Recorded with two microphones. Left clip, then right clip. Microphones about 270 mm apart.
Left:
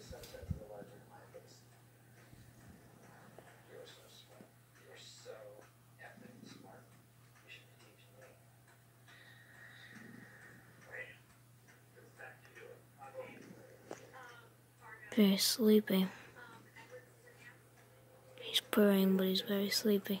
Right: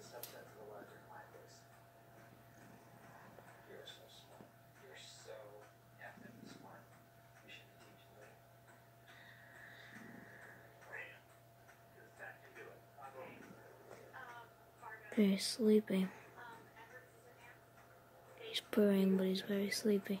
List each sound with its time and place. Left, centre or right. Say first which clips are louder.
15.0 s speech: left 5 dB; centre
18.5 s speech: left 4 dB; centre